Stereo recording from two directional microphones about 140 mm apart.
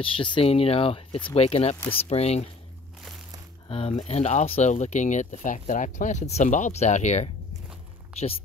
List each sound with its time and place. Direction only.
0.0 s speech: 35° left (ahead or behind)
3.6 s speech: 45° left (ahead or behind)